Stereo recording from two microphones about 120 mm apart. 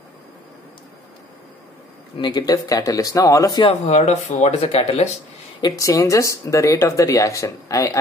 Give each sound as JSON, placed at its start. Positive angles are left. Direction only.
{"t": 2.1, "sound": "speech", "side_deg": 35}
{"t": 3.8, "sound": "speech", "side_deg": 70}
{"t": 5.6, "sound": "speech", "side_deg": 30}